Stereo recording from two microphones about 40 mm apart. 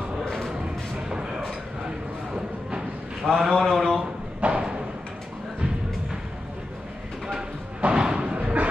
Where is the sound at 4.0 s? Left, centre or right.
Right.